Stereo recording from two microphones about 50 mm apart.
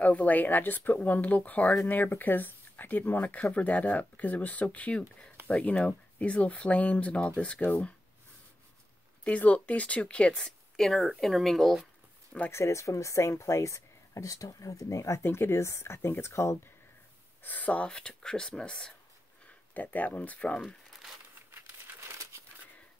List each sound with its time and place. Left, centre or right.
0.0 s speech: left
9.2 s speech: left
10.4 s speech: centre
12.4 s speech: left
15.2 s speech: left
17.4 s speech: left
17.9 s speech: centre
19.4 s speech: left
20.6 s crumpling: centre
21.5 s crumpling: right